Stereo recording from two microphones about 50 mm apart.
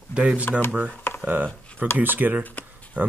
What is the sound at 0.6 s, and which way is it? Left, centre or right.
Speech, right.